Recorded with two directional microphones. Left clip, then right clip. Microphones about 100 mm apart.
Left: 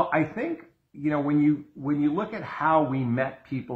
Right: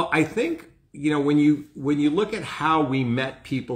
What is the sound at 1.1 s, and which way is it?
Speech, 5° right (ahead or behind).